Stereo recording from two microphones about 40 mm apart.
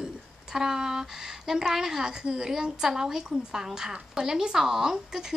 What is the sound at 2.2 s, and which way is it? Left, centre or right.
Speech, right.